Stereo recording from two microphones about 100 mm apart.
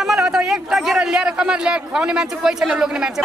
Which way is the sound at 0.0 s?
5° right (ahead or behind).